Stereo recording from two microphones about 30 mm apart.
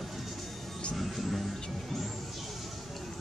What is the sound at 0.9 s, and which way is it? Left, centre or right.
Music, centre.